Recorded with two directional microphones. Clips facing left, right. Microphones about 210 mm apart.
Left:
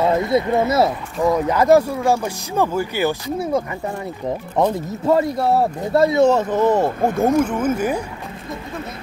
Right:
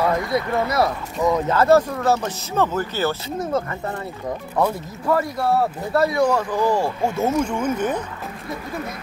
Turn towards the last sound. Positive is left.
turn(degrees=10)  # may be behind; listen again after turning